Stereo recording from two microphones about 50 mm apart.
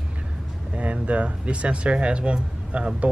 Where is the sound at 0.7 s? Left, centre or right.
Right.